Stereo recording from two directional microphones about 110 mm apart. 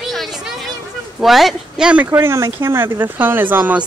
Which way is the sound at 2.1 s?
20° right (ahead or behind).